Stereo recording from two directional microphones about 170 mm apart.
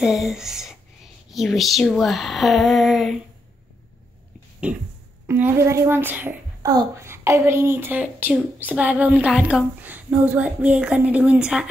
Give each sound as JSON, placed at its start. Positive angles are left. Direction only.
{"t": 0.0, "sound": "speech", "side_deg": 0}
{"t": 5.2, "sound": "a child's voice", "side_deg": -15}